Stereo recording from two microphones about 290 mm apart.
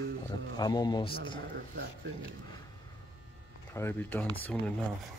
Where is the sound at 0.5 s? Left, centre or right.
Centre.